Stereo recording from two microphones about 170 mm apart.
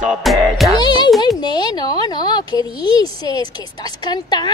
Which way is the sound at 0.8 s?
25° left (ahead or behind).